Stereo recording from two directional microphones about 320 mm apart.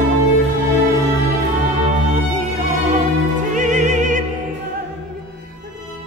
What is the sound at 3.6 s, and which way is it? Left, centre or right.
Opera, right.